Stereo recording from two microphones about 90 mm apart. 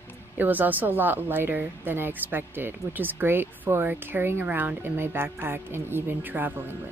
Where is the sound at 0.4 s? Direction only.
20° right (ahead or behind).